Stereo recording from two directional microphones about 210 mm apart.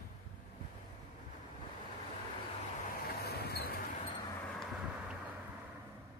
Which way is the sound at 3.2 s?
50° left (ahead or behind).